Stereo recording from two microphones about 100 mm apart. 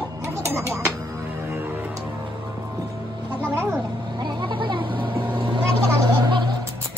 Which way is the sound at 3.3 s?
20° right (ahead or behind).